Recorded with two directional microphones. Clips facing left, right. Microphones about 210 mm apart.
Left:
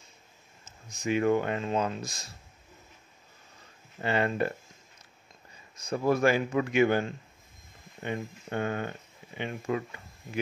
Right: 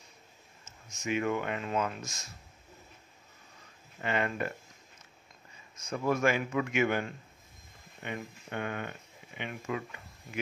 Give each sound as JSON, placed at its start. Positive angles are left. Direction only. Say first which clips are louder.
{"t": 0.7, "sound": "speech", "louder": "left 4 dB", "side_deg": 35}
{"t": 4.0, "sound": "speech", "louder": "left 4 dB", "side_deg": 35}
{"t": 5.8, "sound": "speech", "louder": "left 4 dB", "side_deg": 35}